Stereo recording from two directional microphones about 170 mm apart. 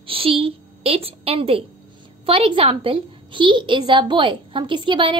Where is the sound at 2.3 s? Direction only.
30° right (ahead or behind).